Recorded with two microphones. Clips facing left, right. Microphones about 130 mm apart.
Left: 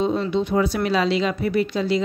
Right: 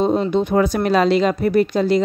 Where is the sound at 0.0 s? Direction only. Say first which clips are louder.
Right 4 dB; 45° right (ahead or behind).